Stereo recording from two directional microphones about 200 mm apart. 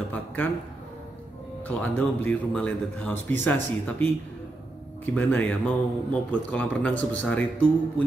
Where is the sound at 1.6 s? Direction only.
10° left (ahead or behind).